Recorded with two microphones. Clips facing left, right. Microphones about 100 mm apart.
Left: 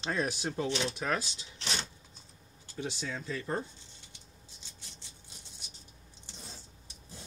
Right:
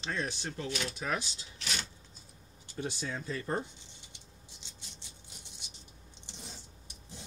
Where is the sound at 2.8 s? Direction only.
15° right (ahead or behind).